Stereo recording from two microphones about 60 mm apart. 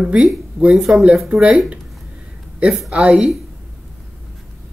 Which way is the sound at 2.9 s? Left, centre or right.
Centre.